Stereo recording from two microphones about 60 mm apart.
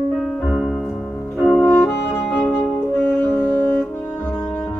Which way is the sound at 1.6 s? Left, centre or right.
Left.